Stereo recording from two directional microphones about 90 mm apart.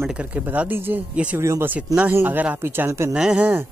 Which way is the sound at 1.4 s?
30° right (ahead or behind).